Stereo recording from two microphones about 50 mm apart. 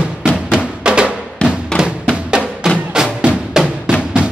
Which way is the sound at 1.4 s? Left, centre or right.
Left.